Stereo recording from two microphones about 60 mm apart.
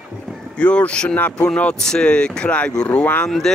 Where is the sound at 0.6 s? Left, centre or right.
Left.